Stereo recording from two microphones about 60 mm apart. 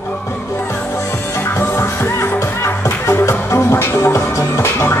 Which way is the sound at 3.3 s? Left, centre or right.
Left.